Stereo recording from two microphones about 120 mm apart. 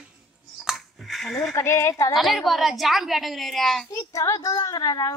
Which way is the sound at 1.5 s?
25° left (ahead or behind).